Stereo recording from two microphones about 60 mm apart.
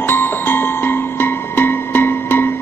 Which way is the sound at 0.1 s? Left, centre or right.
Left.